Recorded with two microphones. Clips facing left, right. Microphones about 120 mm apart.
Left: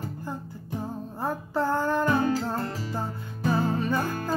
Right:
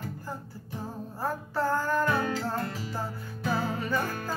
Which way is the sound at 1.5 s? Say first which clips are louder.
Left 2 dB; 25° left (ahead or behind).